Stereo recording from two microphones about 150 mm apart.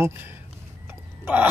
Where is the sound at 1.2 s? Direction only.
10° right (ahead or behind).